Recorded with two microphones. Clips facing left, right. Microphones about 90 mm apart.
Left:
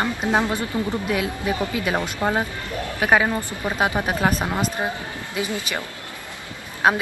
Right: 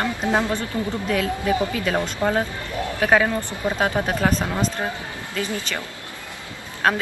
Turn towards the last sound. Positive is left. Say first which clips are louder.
# left 2 dB
turn(degrees=10)  # may be behind; listen again after turning